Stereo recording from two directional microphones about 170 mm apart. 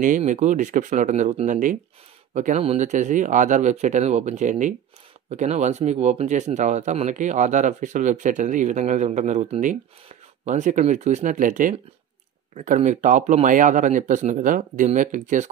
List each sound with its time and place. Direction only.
0.0 s speech: 50° right (ahead or behind)